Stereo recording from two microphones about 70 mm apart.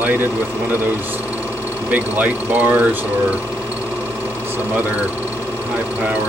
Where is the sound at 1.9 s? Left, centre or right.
Right.